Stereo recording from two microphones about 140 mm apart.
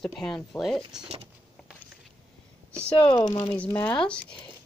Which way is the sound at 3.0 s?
40° left (ahead or behind).